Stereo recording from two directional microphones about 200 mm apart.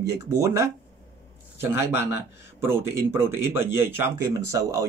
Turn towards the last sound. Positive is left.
turn(degrees=-15)  # may be behind; listen again after turning